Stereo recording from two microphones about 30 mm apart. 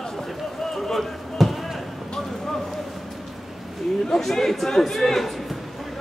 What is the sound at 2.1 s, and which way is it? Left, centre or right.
Speech, centre.